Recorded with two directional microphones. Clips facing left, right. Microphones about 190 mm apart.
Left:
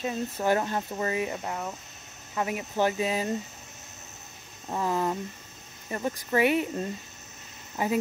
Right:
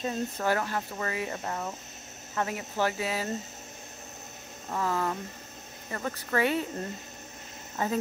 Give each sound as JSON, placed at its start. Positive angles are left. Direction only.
{"t": 0.0, "sound": "speech", "side_deg": 15}
{"t": 4.6, "sound": "speech", "side_deg": 20}